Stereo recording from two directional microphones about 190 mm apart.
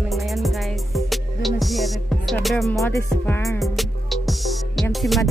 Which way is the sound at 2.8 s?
15° left (ahead or behind).